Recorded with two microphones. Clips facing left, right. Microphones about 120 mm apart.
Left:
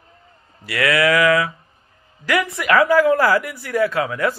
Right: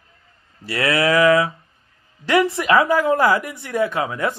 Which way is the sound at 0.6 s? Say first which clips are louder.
Left 1 dB; 30° right (ahead or behind).